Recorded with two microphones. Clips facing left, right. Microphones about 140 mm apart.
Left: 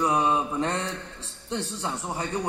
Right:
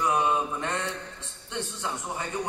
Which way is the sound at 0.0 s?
35° left (ahead or behind).